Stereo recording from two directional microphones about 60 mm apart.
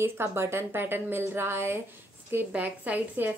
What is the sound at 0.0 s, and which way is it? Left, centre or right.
A woman's voice, right.